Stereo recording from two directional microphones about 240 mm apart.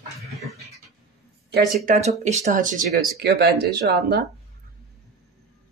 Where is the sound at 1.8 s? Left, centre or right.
Right.